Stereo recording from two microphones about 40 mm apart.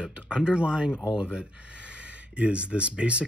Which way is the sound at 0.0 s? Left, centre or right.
Right.